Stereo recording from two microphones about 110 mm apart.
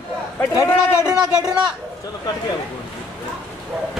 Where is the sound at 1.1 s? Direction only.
5° right (ahead or behind).